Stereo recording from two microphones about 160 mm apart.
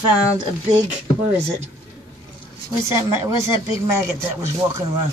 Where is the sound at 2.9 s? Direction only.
20° right (ahead or behind).